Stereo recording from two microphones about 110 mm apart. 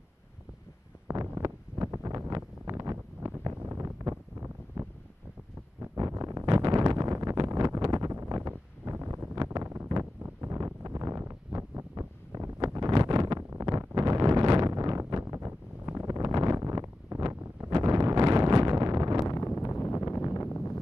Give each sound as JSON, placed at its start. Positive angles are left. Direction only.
{"t": 1.0, "sound": "wind noise", "side_deg": -30}
{"t": 5.8, "sound": "a sound", "side_deg": -30}
{"t": 8.4, "sound": "wind noise", "side_deg": -20}
{"t": 9.4, "sound": "wind noise", "side_deg": -35}
{"t": 9.7, "sound": "wind noise", "side_deg": -25}
{"t": 12.5, "sound": "wind noise", "side_deg": -35}
{"t": 14.7, "sound": "wind noise", "side_deg": -30}
{"t": 19.2, "sound": "wind noise", "side_deg": 25}
{"t": 20.4, "sound": "a sound", "side_deg": 20}